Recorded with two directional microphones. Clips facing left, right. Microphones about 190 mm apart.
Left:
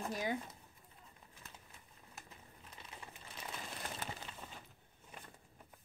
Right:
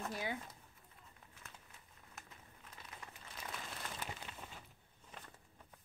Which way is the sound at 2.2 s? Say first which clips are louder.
Left 1 dB; 30° left (ahead or behind).